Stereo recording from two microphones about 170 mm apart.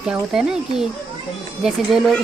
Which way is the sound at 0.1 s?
5° right (ahead or behind).